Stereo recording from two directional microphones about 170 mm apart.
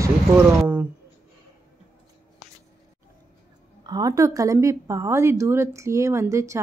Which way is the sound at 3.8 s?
20° right (ahead or behind).